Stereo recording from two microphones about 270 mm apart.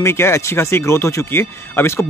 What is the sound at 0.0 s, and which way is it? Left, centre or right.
Speech, centre.